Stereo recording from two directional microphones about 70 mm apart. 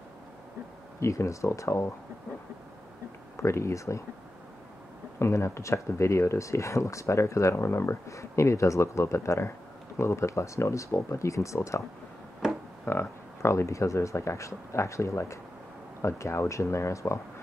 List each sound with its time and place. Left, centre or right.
0.9 s speech: left
3.3 s speech: left
5.2 s speech: left
12.8 s speech: left